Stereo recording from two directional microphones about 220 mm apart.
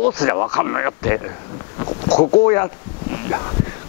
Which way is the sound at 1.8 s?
25° left (ahead or behind).